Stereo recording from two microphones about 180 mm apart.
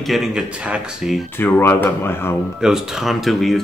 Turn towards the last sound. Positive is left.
turn(degrees=0)  # may be behind; listen again after turning